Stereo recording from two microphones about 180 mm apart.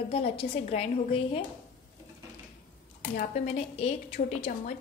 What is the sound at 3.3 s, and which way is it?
Speech, 35° left (ahead or behind).